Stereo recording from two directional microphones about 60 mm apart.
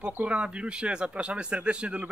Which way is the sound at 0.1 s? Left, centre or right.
Right.